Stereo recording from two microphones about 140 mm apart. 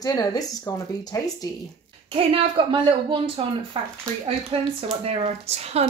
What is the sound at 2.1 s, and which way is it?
A woman's voice, 40° right (ahead or behind).